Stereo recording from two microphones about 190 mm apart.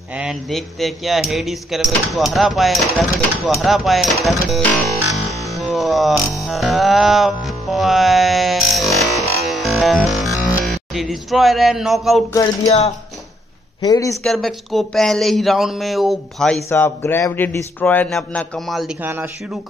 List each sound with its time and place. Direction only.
0.1 s a sound: 5° right (ahead or behind)
6.4 s music: centre (ahead or behind)
10.6 s speech: centre (ahead or behind)
12.3 s a man's voice: 20° left (ahead or behind)
13.7 s a man's voice: 20° left (ahead or behind)
14.2 s a sound: centre (ahead or behind)
16.6 s a man's voice: 10° left (ahead or behind)
19.0 s speech: 10° right (ahead or behind)